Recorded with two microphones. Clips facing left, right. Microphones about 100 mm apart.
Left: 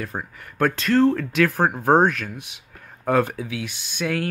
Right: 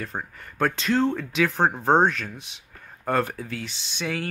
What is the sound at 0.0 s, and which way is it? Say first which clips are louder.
Speech: left 2 dB; 5° left (ahead or behind).